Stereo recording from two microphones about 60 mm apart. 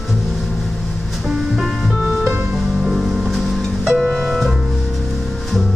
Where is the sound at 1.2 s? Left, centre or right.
Centre.